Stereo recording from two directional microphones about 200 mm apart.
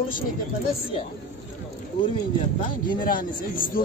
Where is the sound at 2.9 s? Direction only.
45° left (ahead or behind).